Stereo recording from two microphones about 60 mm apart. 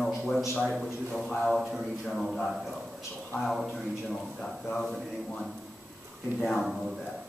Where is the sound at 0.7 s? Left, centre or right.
Centre.